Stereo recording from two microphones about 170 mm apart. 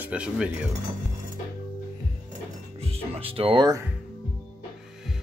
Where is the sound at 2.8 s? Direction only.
35° right (ahead or behind).